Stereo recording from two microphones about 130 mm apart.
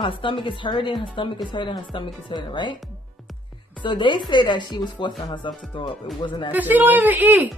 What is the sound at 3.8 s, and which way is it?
A woman's voice, 35° left (ahead or behind).